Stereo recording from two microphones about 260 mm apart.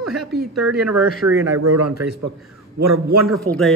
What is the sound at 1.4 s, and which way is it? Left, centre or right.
Speech, right.